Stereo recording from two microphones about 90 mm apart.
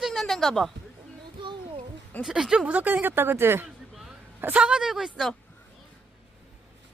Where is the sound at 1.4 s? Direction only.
65° right (ahead or behind).